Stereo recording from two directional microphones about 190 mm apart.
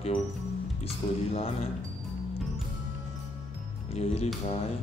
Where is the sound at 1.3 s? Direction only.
30° left (ahead or behind).